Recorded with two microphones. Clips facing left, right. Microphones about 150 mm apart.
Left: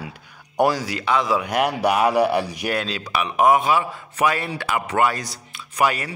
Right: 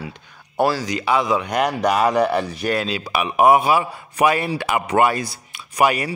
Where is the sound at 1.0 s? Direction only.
5° right (ahead or behind).